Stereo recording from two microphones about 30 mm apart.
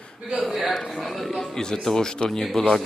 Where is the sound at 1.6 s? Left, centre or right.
Centre.